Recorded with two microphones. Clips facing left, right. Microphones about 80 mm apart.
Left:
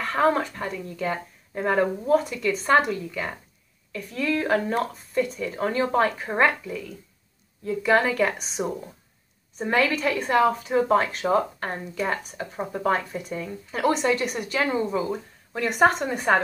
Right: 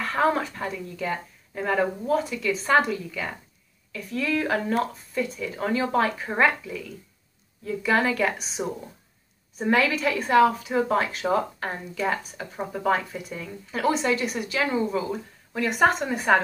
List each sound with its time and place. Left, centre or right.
0.0 s speech: centre